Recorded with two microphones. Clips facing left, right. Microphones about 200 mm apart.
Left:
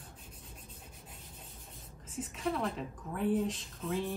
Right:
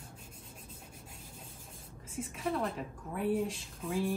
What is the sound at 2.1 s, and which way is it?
A woman's voice, centre (ahead or behind).